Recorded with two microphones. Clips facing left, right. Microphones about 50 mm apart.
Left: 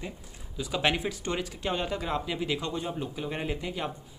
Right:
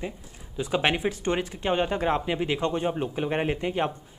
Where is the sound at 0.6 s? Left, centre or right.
Right.